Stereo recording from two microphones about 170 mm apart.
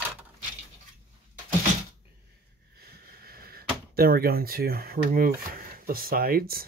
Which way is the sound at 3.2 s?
60° right (ahead or behind).